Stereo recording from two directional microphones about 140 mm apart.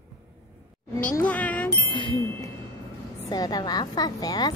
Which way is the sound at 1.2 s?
10° left (ahead or behind).